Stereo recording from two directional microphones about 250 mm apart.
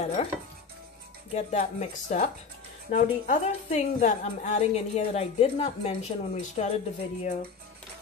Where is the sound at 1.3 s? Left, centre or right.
Left.